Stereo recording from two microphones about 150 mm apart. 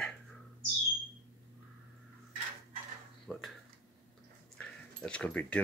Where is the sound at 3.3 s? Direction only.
Centre (ahead or behind).